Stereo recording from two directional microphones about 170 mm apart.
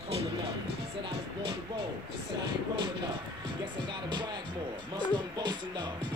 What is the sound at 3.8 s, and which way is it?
Music, 25° right (ahead or behind).